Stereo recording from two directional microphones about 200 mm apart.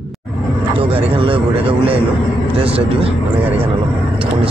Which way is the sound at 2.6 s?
30° right (ahead or behind).